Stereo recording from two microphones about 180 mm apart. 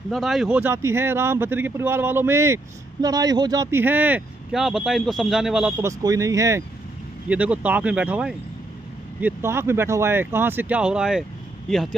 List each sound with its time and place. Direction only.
0.1 s speech: centre (ahead or behind)
5.9 s speech: 20° right (ahead or behind)